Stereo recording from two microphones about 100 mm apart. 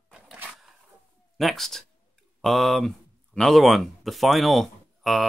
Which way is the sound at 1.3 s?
Centre (ahead or behind).